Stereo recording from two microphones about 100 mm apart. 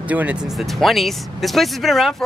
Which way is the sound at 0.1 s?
15° right (ahead or behind).